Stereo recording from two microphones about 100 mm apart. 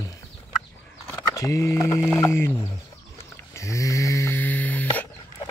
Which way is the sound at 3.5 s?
30° left (ahead or behind).